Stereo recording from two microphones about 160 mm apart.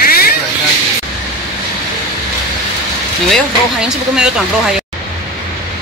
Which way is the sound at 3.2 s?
Centre (ahead or behind).